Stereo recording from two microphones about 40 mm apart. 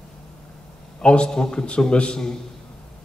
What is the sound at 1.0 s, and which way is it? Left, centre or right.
A woman's voice, left.